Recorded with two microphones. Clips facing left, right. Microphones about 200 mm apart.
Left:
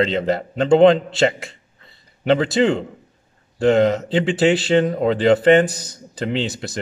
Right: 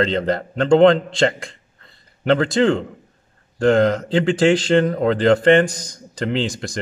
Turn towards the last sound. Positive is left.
turn(degrees=5)  # may be behind; listen again after turning